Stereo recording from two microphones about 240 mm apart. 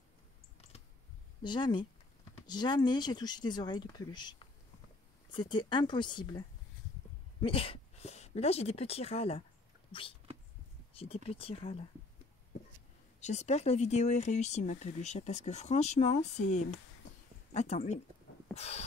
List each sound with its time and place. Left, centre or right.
1.4 s speech: centre
7.4 s speech: left
10.9 s a sound: left
11.2 s speech: left
13.2 s speech: left
17.5 s speech: left
18.5 s a sound: left